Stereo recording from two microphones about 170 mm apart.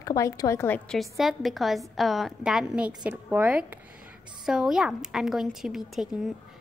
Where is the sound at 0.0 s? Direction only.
20° left (ahead or behind).